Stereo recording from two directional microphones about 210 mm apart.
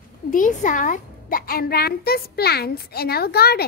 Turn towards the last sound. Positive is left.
turn(degrees=50)  # may be behind; listen again after turning